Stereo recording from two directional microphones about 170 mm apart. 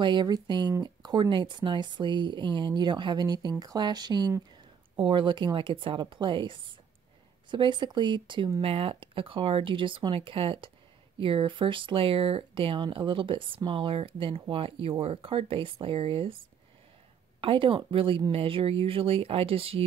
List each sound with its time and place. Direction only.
0.0 s speech: 25° right (ahead or behind)
17.4 s speech: 30° right (ahead or behind)